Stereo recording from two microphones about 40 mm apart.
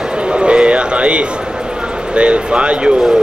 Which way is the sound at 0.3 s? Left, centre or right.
Right.